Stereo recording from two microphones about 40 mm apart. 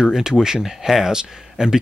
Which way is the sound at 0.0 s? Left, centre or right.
Centre.